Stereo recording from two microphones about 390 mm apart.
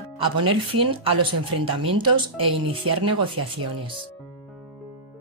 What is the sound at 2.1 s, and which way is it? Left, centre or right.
Speech, right.